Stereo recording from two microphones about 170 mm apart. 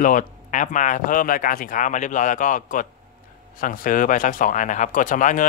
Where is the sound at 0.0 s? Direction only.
50° left (ahead or behind).